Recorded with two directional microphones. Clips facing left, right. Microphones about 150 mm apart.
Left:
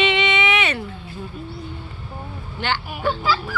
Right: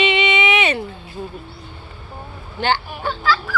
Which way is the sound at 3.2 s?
20° left (ahead or behind).